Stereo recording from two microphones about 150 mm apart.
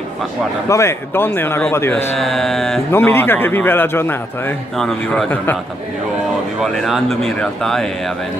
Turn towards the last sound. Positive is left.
turn(degrees=0)  # may be behind; listen again after turning